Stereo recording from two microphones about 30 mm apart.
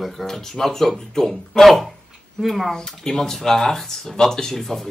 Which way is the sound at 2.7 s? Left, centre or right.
Centre.